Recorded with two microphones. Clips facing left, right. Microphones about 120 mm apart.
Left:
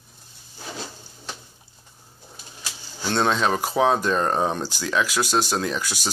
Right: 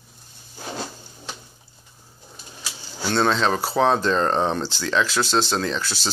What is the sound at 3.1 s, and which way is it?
Speech, 10° left (ahead or behind).